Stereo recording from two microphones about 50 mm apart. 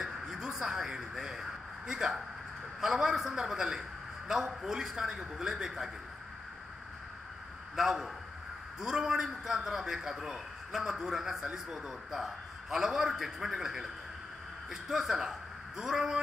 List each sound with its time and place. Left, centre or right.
0.0 s a sound: centre
2.8 s a man's voice: centre
7.7 s a man's voice: centre